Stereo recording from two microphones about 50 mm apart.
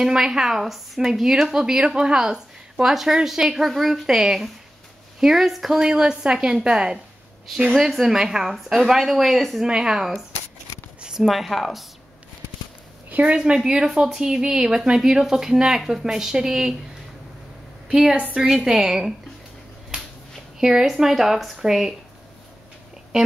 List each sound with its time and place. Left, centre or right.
0.0 s a woman's voice: centre
5.8 s a woman's voice: centre
9.6 s a woman's voice: centre
11.0 s zipper: centre
11.2 s speech: centre
13.1 s a woman's voice: right
13.7 s a woman's voice: centre
17.8 s a woman's voice: centre
19.9 s finger snapping: right
20.5 s a woman's voice: centre